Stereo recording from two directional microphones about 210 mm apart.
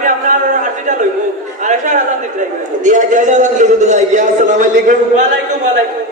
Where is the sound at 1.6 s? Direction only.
35° right (ahead or behind).